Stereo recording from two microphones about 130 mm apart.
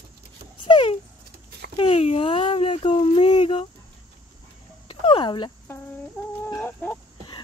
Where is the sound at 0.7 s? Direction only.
40° left (ahead or behind).